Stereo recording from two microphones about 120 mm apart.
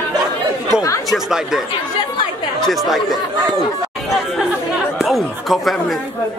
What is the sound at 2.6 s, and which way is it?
Speech, centre (ahead or behind).